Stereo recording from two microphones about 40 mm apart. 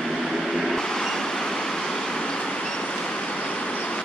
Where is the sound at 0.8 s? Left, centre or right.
Centre.